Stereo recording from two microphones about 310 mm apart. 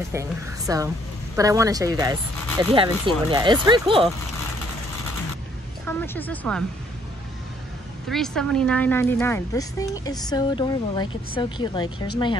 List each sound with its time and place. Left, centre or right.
0.1 s speech: centre
5.9 s speech: centre
8.1 s speech: centre